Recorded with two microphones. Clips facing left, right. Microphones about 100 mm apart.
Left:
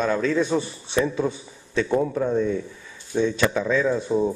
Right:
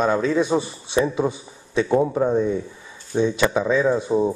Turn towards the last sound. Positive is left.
turn(degrees=-15)  # may be behind; listen again after turning